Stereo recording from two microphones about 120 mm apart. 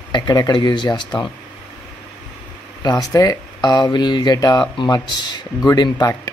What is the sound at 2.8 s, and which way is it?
Speech, 30° left (ahead or behind).